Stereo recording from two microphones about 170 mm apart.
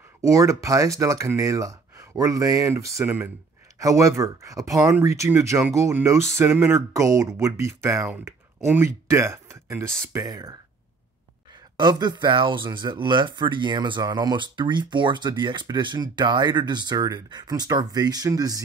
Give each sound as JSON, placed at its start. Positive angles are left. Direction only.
{"t": 0.2, "sound": "speech", "side_deg": -20}
{"t": 11.7, "sound": "speech", "side_deg": -25}